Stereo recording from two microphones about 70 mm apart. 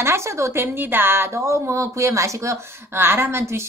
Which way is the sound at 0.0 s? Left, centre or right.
Right.